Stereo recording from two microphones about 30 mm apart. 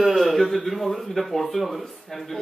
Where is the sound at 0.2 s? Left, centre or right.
Centre.